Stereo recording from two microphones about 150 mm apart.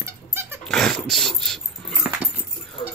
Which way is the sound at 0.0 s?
15° right (ahead or behind).